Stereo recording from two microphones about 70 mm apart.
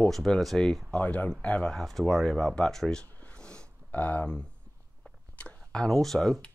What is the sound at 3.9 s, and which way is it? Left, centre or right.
Speech, left.